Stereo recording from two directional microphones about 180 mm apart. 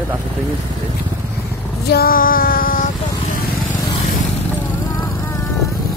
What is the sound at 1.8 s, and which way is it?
Female singing, 60° left (ahead or behind).